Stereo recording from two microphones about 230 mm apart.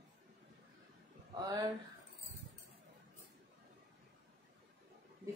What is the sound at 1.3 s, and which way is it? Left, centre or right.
Speech, centre.